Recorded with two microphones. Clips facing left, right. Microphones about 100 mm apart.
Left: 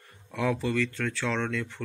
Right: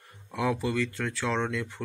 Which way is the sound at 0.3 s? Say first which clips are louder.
Even; 10° right (ahead or behind).